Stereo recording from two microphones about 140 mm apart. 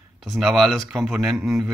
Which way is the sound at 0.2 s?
Centre (ahead or behind).